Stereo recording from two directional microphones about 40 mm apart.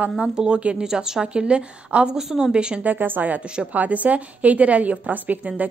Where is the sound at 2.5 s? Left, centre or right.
Right.